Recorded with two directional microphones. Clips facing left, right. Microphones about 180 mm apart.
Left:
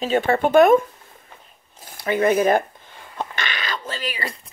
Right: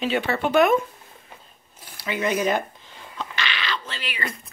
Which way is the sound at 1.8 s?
50° left (ahead or behind).